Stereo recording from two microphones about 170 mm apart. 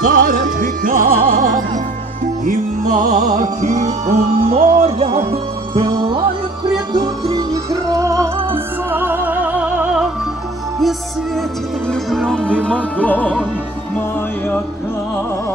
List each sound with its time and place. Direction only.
0.0 s music: 55° right (ahead or behind); by 10.0 s 10° right (ahead or behind)
11.9 s music: 5° left (ahead or behind)